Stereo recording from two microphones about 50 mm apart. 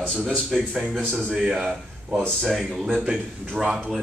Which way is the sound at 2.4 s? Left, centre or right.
Centre.